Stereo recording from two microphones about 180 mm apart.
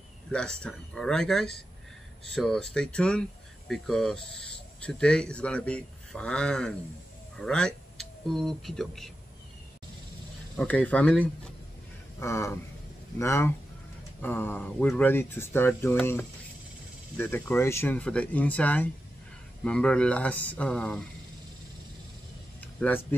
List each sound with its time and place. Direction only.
0.3 s speech: 5° left (ahead or behind)
10.5 s speech: 5° left (ahead or behind)
22.8 s speech: 10° left (ahead or behind)